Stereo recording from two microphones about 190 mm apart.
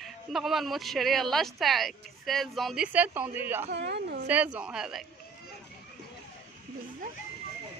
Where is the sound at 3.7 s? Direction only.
60° right (ahead or behind).